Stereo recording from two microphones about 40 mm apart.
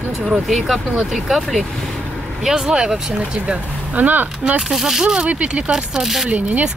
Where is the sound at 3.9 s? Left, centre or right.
Right.